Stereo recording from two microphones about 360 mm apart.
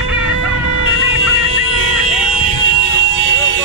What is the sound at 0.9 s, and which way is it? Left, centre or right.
Music, right.